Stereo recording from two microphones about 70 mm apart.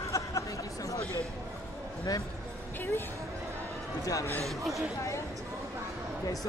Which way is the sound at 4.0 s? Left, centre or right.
Left.